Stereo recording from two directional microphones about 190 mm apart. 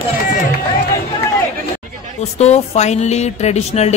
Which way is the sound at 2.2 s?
35° left (ahead or behind).